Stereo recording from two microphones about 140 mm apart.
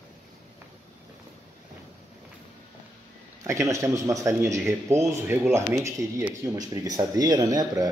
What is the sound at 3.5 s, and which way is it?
Speech, 20° right (ahead or behind).